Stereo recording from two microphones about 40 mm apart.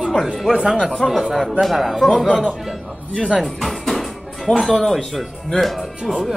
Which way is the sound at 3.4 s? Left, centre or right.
Centre.